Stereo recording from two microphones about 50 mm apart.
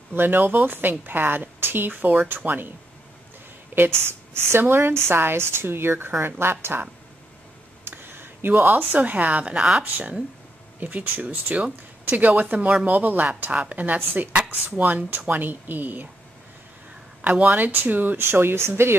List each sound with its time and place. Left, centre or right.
0.1 s a woman's voice: right
3.7 s a woman's voice: right
7.8 s a sound: right
8.9 s a woman's voice: right
10.8 s a woman's voice: right
17.2 s a woman's voice: right
18.1 s a woman's voice: right